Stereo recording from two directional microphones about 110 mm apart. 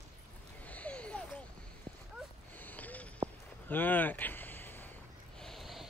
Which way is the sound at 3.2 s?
90° right.